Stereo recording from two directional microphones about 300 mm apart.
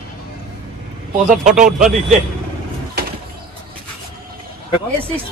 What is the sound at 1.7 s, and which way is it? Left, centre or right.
Speech, centre.